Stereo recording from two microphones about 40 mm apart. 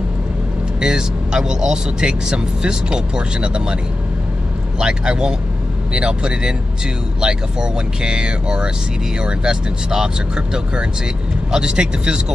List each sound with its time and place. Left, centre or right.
0.7 s speech: centre
4.7 s speech: right